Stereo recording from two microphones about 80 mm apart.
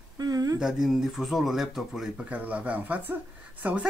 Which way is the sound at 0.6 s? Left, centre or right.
Centre.